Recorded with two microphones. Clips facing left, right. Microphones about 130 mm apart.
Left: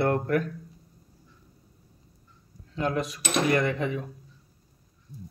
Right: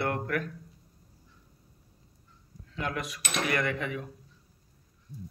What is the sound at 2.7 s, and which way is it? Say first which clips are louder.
Speech: left 6 dB; 30° left (ahead or behind).